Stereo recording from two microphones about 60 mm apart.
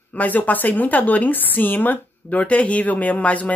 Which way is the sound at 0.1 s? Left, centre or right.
Left.